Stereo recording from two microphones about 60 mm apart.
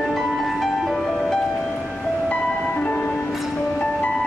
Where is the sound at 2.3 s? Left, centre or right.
Left.